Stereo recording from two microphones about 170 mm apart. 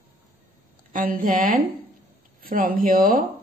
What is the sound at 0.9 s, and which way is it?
A woman's voice, 55° right (ahead or behind).